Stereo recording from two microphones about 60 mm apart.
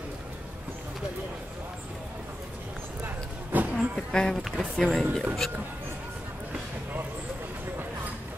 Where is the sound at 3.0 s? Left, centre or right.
Right.